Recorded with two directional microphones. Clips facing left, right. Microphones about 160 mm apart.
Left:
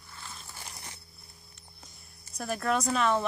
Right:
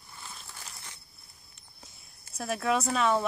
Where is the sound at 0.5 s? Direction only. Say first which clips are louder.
Left 2 dB; 20° left (ahead or behind).